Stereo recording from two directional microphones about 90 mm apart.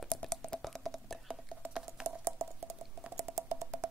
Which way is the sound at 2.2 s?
30° right (ahead or behind).